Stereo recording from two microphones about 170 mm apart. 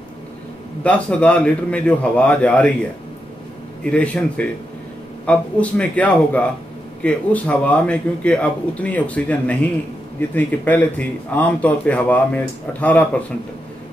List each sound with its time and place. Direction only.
0.8 s speech: 5° left (ahead or behind)
3.9 s speech: 5° left (ahead or behind)